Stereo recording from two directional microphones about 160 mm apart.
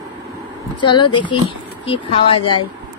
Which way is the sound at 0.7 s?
30° left (ahead or behind).